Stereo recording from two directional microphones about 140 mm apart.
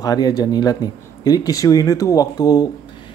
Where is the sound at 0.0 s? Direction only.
30° left (ahead or behind).